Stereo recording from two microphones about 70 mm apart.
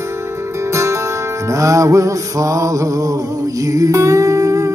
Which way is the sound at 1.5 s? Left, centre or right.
Right.